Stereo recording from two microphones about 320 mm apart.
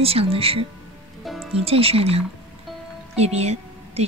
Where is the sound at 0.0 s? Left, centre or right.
Centre.